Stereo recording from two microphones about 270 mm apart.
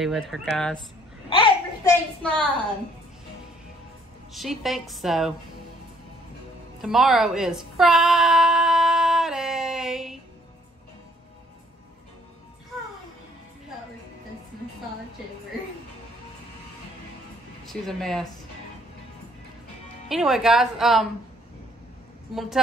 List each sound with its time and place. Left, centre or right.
0.0 s speech: centre
1.3 s a sound: centre
2.2 s speech: centre
4.3 s speech: centre
6.8 s music: centre
17.6 s speech: centre
20.1 s speech: centre
22.3 s speech: centre